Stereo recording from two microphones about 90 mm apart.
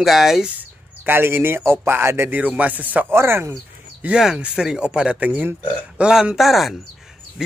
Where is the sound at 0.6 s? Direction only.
25° right (ahead or behind).